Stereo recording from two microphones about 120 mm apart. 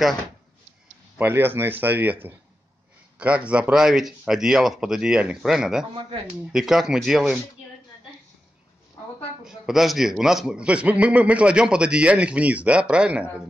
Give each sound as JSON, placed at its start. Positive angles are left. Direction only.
{"t": 1.1, "sound": "a man's voice", "side_deg": -15}
{"t": 9.4, "sound": "a man's voice", "side_deg": -5}